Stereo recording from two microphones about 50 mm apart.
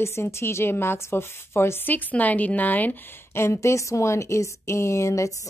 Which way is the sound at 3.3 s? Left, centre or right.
Left.